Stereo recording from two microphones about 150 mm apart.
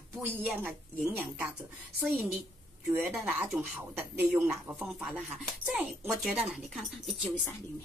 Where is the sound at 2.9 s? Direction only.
Centre (ahead or behind).